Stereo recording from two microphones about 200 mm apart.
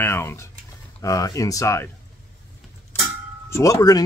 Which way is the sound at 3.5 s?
15° left (ahead or behind).